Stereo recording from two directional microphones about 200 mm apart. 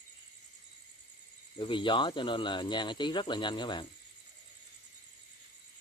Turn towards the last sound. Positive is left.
turn(degrees=25)  # may be behind; listen again after turning